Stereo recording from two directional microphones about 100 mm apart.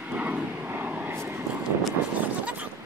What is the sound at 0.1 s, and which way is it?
Vehicle, 15° right (ahead or behind).